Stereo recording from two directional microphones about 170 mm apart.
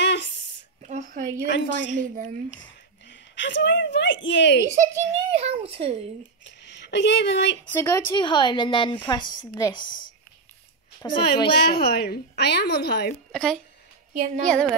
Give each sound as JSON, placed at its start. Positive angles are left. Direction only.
{"t": 0.0, "sound": "a sound", "side_deg": 90}
{"t": 0.8, "sound": "a sound", "side_deg": -45}
{"t": 1.4, "sound": "a woman's voice", "side_deg": 90}
{"t": 3.1, "sound": "a woman's voice", "side_deg": 90}
{"t": 4.7, "sound": "a child's voice", "side_deg": -40}
{"t": 6.4, "sound": "speech", "side_deg": 90}
{"t": 7.7, "sound": "speech", "side_deg": 15}
{"t": 8.2, "sound": "a woman's voice", "side_deg": 30}
{"t": 11.8, "sound": "a woman's voice", "side_deg": 65}
{"t": 13.3, "sound": "speech", "side_deg": 5}
{"t": 14.1, "sound": "a woman's voice", "side_deg": -50}